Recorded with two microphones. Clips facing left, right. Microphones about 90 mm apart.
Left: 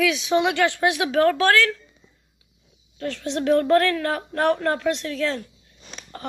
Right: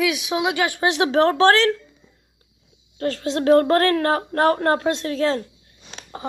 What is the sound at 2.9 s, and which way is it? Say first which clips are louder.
A woman's voice: right 4 dB; 45° right (ahead or behind).